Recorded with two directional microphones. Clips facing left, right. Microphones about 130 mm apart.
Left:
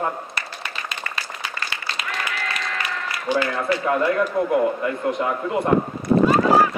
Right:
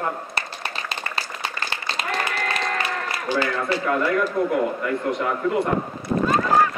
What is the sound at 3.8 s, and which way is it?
A man's voice, 25° left (ahead or behind).